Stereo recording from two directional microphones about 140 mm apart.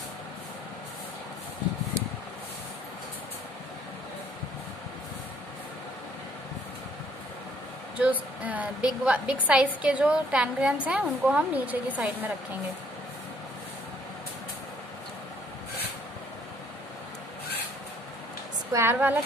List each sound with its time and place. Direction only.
8.0 s a woman's voice: 10° right (ahead or behind)
18.7 s a woman's voice: 15° right (ahead or behind)